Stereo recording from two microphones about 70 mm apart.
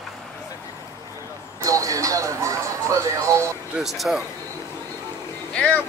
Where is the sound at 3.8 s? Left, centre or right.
Centre.